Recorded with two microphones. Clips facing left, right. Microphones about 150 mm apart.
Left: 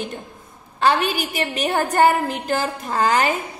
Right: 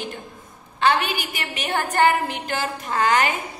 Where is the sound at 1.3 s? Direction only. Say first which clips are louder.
Left 6 dB; 35° left (ahead or behind).